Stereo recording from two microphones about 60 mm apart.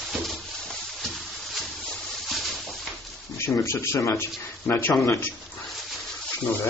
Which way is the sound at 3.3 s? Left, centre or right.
Left.